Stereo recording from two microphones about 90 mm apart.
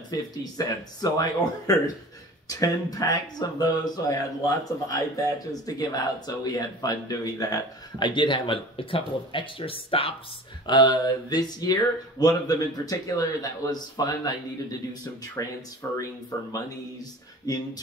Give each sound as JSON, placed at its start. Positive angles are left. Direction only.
{"t": 0.1, "sound": "speech", "side_deg": 45}
{"t": 8.1, "sound": "speech", "side_deg": 65}
{"t": 10.7, "sound": "speech", "side_deg": 55}
{"t": 15.8, "sound": "speech", "side_deg": 30}